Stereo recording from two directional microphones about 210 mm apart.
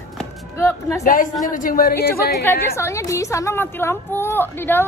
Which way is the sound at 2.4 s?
10° left (ahead or behind).